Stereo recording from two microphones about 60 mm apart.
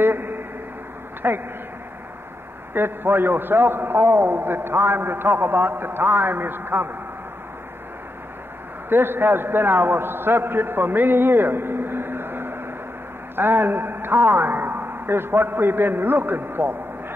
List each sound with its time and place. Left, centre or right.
0.0 s a sound: right
1.2 s a man's voice: right
2.7 s a man's voice: right
8.8 s a man's voice: right